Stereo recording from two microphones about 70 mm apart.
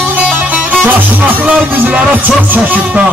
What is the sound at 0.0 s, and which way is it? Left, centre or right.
Music, right.